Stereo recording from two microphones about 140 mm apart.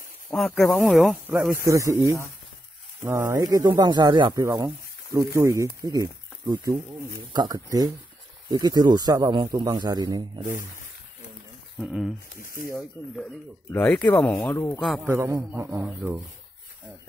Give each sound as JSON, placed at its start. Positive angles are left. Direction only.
{"t": 0.6, "sound": "speech", "side_deg": 0}
{"t": 1.7, "sound": "a man's voice", "side_deg": -20}
{"t": 11.8, "sound": "speech", "side_deg": -5}
{"t": 12.4, "sound": "speech", "side_deg": 90}
{"t": 13.7, "sound": "speech", "side_deg": 10}
{"t": 15.0, "sound": "a man's voice", "side_deg": -15}